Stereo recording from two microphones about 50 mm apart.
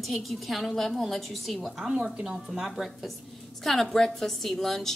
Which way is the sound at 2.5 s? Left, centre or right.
Centre.